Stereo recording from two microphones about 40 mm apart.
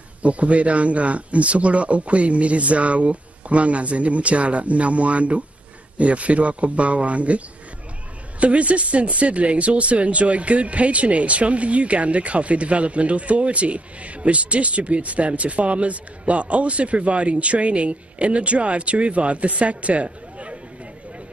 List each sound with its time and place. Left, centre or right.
0.2 s speech: right